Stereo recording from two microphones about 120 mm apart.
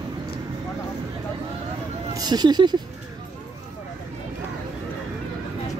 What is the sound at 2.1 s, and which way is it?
Speech, 35° right (ahead or behind).